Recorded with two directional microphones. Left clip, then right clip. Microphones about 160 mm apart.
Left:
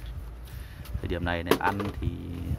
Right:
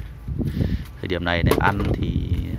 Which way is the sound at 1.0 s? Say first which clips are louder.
Right 6 dB; 20° right (ahead or behind).